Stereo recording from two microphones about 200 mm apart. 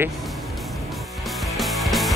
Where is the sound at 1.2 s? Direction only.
Centre (ahead or behind).